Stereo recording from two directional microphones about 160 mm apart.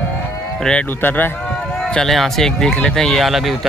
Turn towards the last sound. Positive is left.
turn(degrees=0)  # may be behind; listen again after turning